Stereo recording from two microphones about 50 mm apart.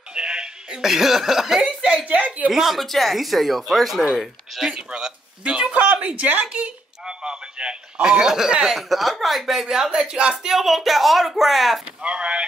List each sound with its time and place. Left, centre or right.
0.1 s speech: centre
2.0 s a woman's voice: right
2.5 s speech: centre
4.7 s speech: centre
7.1 s a sound: centre
8.7 s speech: centre
9.8 s speech: centre
12.0 s speech: centre